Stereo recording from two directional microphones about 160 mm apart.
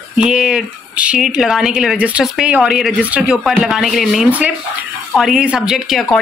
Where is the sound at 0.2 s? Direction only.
5° right (ahead or behind).